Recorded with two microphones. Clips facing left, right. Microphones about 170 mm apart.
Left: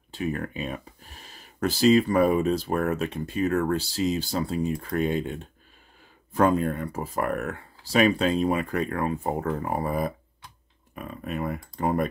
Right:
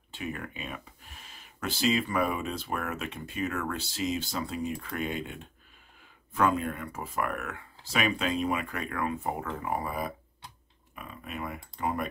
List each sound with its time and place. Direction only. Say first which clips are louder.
0.1 s speech: left 7 dB; 40° left (ahead or behind)